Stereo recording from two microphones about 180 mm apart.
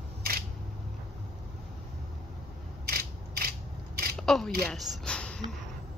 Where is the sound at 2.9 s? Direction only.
60° right (ahead or behind).